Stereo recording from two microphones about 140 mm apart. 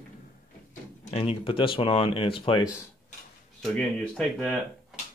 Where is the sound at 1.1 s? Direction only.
45° left (ahead or behind).